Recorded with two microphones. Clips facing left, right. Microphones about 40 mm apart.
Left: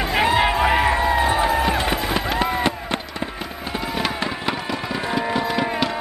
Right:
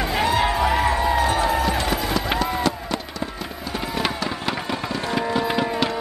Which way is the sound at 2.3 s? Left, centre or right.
Left.